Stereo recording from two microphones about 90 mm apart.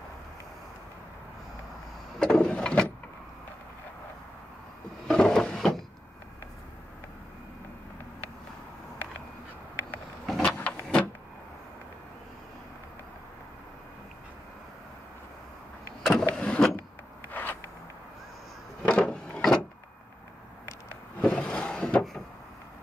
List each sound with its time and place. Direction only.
2.1 s vehicle: 10° left (ahead or behind)
5.0 s wood: 10° left (ahead or behind)
10.2 s a sound: 5° left (ahead or behind)
16.0 s vehicle: 5° left (ahead or behind)
16.3 s power windows: 10° left (ahead or behind)
17.3 s zipper: 20° left (ahead or behind)
18.8 s a sound: 10° left (ahead or behind)
19.3 s wood: 5° left (ahead or behind)
21.2 s vehicle: 10° left (ahead or behind)